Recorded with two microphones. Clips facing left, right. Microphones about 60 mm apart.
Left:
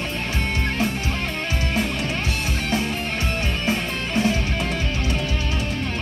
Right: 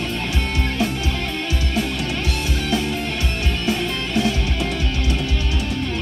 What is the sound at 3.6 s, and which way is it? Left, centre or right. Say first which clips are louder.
Music: right 4 dB; left.